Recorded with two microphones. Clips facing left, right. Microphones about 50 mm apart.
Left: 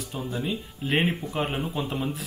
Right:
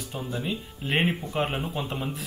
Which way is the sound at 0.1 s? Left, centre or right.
Centre.